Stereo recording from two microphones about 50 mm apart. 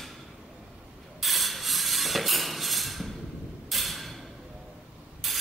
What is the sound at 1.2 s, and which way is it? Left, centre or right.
Mechanisms, centre.